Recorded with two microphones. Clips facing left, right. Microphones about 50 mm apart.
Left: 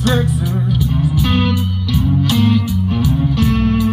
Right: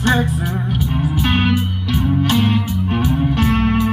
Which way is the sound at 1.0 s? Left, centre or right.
Right.